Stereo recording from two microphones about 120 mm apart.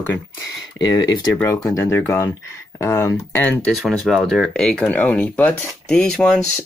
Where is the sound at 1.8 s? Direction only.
20° left (ahead or behind).